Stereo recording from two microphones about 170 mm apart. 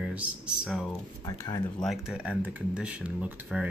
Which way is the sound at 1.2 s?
20° left (ahead or behind).